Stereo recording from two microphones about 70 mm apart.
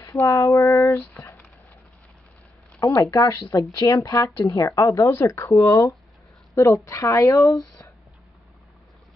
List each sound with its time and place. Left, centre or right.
0.2 s speech: left
3.0 s a woman's voice: left